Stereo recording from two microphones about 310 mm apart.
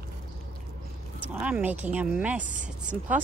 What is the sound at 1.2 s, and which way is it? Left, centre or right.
Speech, centre.